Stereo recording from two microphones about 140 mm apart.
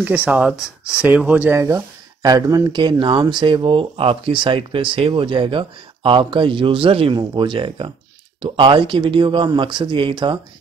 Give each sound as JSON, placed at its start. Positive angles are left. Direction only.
{"t": 0.0, "sound": "speech", "side_deg": -10}